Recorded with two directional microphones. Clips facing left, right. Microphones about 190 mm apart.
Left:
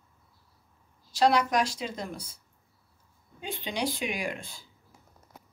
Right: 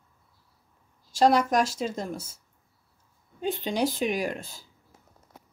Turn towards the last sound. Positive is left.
turn(degrees=-40)  # may be behind; listen again after turning